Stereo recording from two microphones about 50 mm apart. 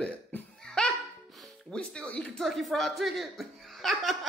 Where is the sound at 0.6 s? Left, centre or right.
Centre.